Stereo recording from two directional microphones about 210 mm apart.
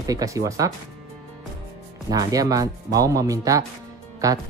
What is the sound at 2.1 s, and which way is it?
Speech, 15° right (ahead or behind).